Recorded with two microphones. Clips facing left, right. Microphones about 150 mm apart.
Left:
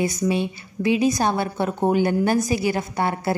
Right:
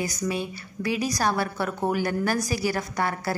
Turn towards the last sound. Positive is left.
turn(degrees=25)  # may be behind; listen again after turning